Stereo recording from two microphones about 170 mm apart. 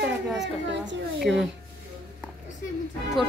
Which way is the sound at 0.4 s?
90° right.